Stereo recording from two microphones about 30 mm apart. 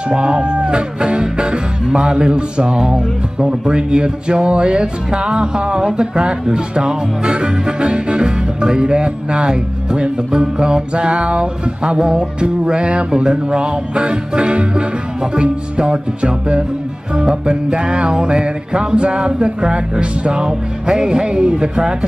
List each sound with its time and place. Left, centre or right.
0.1 s speech: right
2.9 s music: right
5.9 s speech: right
12.0 s music: right
13.1 s speech: right
17.1 s music: right